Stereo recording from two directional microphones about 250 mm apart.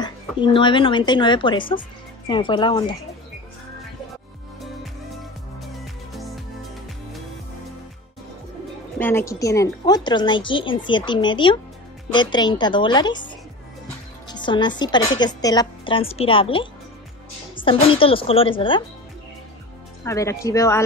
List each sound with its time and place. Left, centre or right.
0.0 s speech: centre
8.9 s a woman's voice: centre
14.2 s music: centre
14.8 s a woman's voice: centre
17.6 s a woman's voice: left
20.1 s a woman's voice: centre